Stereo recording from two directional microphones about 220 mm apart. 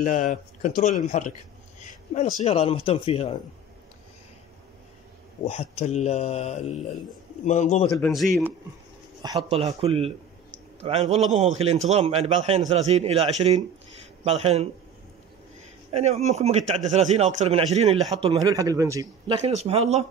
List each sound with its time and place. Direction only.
0.0 s speech: 35° left (ahead or behind)
5.4 s speech: 30° left (ahead or behind)
8.0 s speech: centre (ahead or behind)
9.5 s a man's voice: 30° right (ahead or behind)
15.9 s a man's voice: 30° right (ahead or behind)
18.4 s a man's voice: 15° right (ahead or behind)